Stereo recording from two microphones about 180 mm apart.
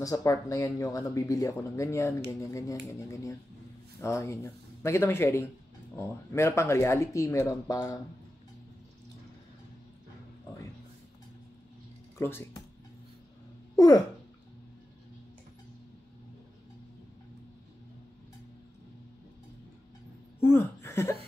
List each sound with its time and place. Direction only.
0.0 s speech: 20° left (ahead or behind)
12.2 s speech: 15° left (ahead or behind)
13.7 s speech: 20° left (ahead or behind)
20.4 s speech: 15° left (ahead or behind)